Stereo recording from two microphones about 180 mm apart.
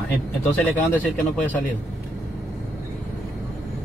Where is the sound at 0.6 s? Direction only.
10° left (ahead or behind).